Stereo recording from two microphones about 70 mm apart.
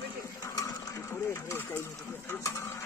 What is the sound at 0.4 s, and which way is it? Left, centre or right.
Sewing machine, left.